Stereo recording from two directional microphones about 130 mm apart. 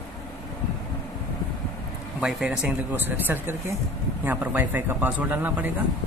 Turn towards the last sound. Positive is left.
turn(degrees=-15)  # may be behind; listen again after turning